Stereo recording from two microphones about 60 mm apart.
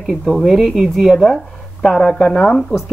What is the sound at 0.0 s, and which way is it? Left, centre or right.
A woman's voice, centre.